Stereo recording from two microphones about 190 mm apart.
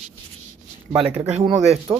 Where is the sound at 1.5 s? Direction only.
35° right (ahead or behind).